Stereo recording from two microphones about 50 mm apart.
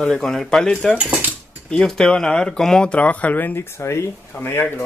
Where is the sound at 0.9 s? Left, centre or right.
Right.